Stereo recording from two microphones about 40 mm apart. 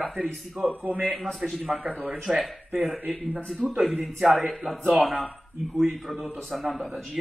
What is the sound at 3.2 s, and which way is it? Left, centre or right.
Speech, left.